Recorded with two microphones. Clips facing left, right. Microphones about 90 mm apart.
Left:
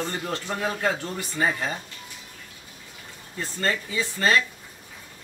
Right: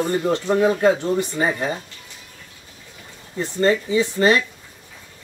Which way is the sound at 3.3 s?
20° right (ahead or behind).